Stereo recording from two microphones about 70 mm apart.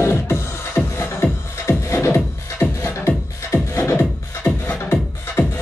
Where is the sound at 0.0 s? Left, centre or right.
Left.